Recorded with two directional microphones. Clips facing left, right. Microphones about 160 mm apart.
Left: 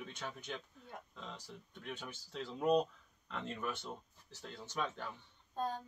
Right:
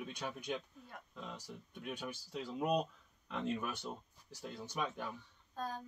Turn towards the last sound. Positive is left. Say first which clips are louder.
# left 3 dB
turn(degrees=25)  # may be behind; listen again after turning